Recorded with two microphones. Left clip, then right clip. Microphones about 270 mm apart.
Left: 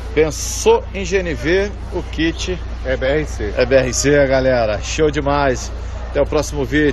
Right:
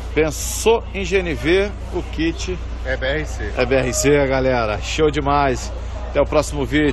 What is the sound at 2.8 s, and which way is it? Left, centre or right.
Speech, left.